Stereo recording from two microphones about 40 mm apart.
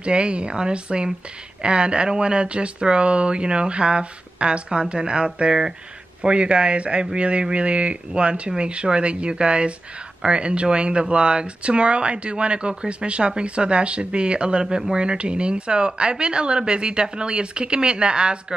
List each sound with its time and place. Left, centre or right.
0.0 s speech: right